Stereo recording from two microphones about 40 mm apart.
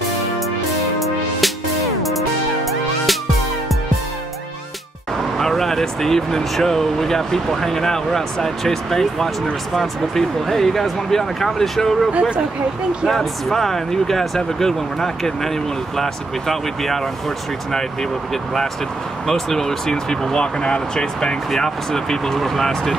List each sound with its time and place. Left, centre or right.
0.7 s music: centre
5.4 s speech: centre
12.1 s speech: right
13.1 s speech: centre
18.3 s speech: centre